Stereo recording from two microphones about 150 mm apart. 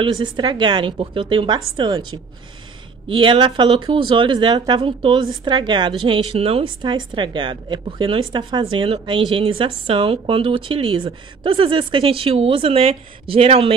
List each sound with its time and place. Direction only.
0.0 s a woman's voice: 30° right (ahead or behind)